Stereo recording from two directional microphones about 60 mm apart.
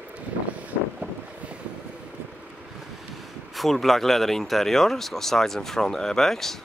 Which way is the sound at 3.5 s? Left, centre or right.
Centre.